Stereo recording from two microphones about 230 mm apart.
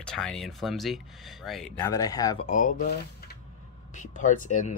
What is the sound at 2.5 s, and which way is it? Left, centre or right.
Speech, left.